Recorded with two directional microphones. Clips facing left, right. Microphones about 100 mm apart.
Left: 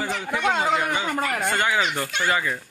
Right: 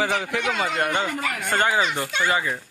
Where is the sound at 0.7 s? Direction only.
60° right (ahead or behind).